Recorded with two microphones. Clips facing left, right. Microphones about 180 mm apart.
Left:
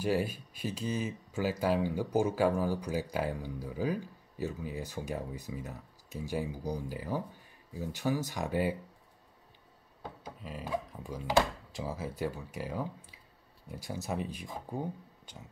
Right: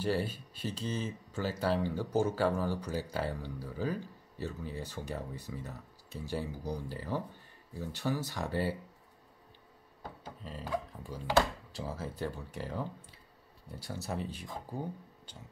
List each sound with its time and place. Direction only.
0.0 s speech: 10° left (ahead or behind)
10.2 s speech: 10° left (ahead or behind)